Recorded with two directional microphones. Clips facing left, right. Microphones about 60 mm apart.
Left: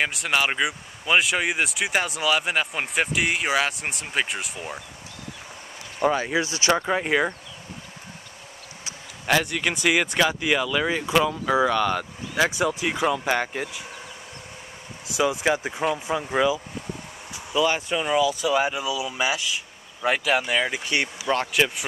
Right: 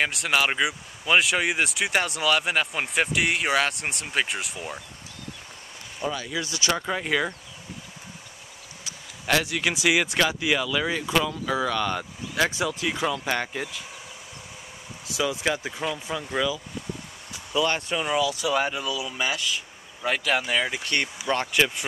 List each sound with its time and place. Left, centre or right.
0.0 s speech: centre
5.9 s speech: left; by 7.3 s centre
9.2 s speech: centre
12.4 s speech: centre
15.5 s speech: centre
17.5 s speech: centre